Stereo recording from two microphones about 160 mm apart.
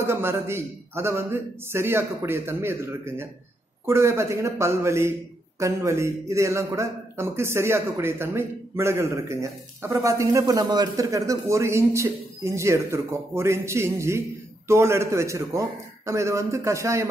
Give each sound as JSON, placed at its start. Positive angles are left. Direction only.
{"t": 0.0, "sound": "a man's voice", "side_deg": -15}